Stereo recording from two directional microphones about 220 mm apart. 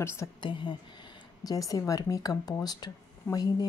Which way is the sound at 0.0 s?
15° left (ahead or behind).